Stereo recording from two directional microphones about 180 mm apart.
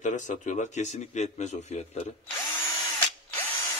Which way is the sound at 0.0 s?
40° left (ahead or behind).